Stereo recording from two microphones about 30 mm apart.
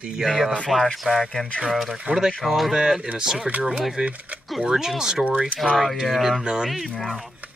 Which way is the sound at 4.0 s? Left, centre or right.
Right.